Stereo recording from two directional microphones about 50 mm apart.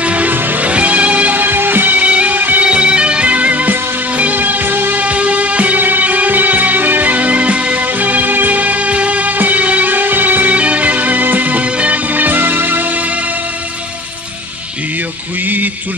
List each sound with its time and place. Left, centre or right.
0.0 s music: right
0.3 s music: right
2.6 s music: right
5.0 s music: right
15.4 s a sound: right